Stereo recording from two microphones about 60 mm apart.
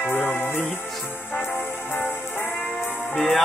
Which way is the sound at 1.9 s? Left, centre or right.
Left.